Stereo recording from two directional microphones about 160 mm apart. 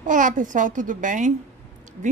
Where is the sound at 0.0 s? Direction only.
55° right (ahead or behind).